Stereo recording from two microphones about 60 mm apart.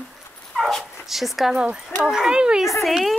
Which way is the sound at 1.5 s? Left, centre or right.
Centre.